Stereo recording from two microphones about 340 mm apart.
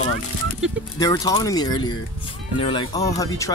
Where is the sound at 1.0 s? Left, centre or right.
Centre.